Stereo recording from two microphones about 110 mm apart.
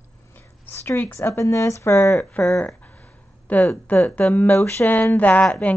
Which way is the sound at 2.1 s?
10° left (ahead or behind).